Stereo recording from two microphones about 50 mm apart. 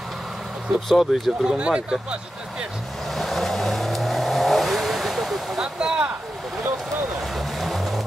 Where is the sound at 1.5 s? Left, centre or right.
Centre.